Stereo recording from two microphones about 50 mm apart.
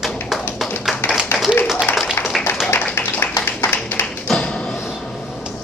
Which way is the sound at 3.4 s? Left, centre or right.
Left.